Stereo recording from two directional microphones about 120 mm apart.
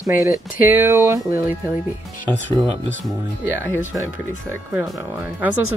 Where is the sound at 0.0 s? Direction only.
25° right (ahead or behind).